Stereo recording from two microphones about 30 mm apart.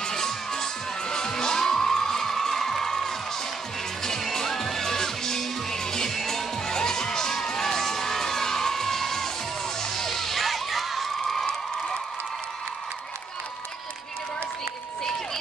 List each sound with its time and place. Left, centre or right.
0.0 s music: centre
7.5 s crowd: centre